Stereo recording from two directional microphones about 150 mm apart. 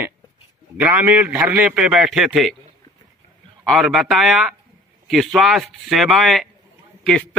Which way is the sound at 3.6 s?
Centre (ahead or behind).